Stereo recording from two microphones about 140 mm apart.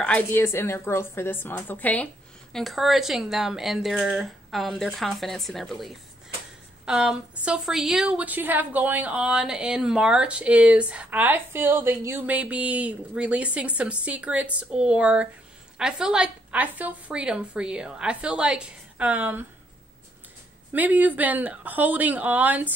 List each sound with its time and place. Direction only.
0.0 s a woman's voice: 10° left (ahead or behind)
2.5 s a woman's voice: centre (ahead or behind)
20.7 s a woman's voice: 10° right (ahead or behind)